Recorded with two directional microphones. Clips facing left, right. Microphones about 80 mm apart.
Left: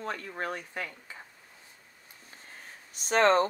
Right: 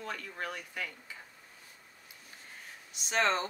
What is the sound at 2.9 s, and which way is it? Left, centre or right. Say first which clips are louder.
Speech: left 7 dB; left.